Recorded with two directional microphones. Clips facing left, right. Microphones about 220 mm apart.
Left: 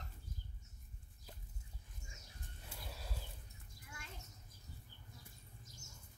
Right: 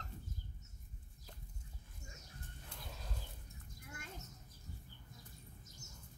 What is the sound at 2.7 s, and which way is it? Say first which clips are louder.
Horse: left 1 dB; 5° left (ahead or behind).